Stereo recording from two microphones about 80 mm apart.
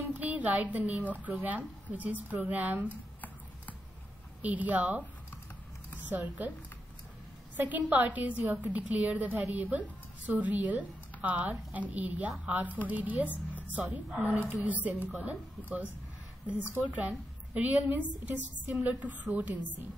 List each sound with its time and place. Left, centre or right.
0.1 s a woman's voice: centre
2.9 s a sound: left
4.4 s a woman's voice: centre
6.0 s a woman's voice: right
7.5 s a woman's voice: right